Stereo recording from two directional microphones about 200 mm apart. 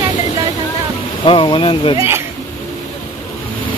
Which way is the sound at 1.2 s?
25° left (ahead or behind).